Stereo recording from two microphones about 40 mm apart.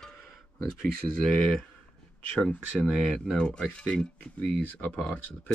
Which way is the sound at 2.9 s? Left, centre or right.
Centre.